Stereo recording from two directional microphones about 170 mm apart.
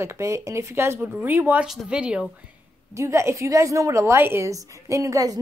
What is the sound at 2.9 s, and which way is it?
A woman's voice, 15° right (ahead or behind).